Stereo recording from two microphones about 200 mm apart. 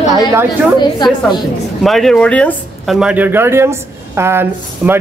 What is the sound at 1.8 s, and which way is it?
Speech, centre (ahead or behind).